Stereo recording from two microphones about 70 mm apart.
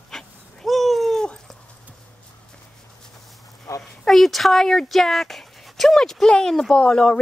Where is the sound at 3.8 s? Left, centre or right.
Centre.